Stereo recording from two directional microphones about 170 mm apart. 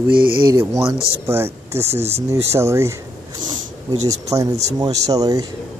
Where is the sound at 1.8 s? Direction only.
35° right (ahead or behind).